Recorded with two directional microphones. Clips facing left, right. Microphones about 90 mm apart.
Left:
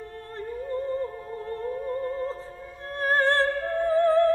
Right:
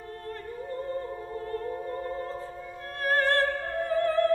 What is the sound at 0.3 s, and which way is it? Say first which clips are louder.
Music: left 4 dB; 30° left (ahead or behind).